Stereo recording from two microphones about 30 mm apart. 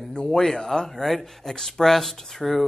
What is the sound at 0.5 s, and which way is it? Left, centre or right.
Speech, centre.